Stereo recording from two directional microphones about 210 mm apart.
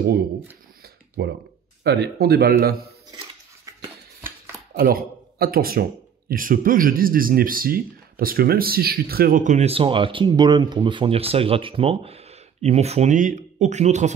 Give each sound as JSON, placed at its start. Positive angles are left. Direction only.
{"t": 0.8, "sound": "a sound", "side_deg": -50}
{"t": 1.8, "sound": "speech", "side_deg": -50}
{"t": 4.7, "sound": "speech", "side_deg": -45}